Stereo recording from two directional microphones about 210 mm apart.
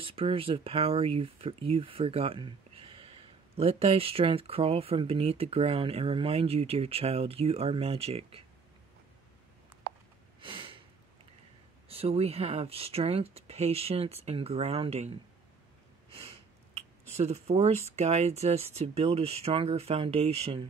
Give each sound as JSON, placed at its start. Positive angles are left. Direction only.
{"t": 0.0, "sound": "speech", "side_deg": -25}
{"t": 10.4, "sound": "a sound", "side_deg": -25}
{"t": 11.9, "sound": "speech", "side_deg": -30}
{"t": 16.3, "sound": "speech", "side_deg": -30}